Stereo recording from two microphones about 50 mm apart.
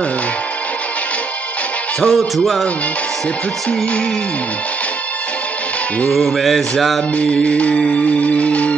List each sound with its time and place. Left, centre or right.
2.0 s music: centre
6.0 s music: centre
7.4 s music: left